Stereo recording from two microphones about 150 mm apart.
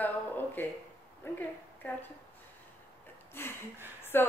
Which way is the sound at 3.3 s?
15° left (ahead or behind).